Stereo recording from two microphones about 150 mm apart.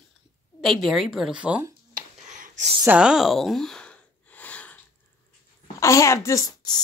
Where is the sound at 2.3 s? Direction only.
55° right (ahead or behind).